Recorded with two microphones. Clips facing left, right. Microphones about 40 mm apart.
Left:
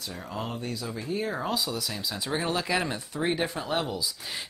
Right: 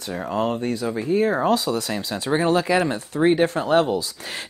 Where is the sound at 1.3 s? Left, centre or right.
Right.